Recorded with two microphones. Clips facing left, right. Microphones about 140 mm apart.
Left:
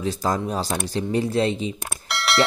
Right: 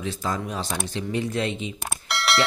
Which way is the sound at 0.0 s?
40° left (ahead or behind).